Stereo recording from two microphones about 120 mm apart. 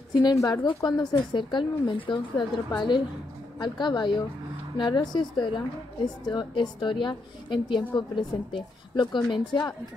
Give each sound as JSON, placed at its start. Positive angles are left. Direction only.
{"t": 0.1, "sound": "a woman's voice", "side_deg": 35}